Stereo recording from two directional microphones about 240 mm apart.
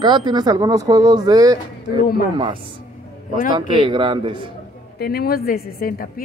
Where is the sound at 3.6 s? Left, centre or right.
Right.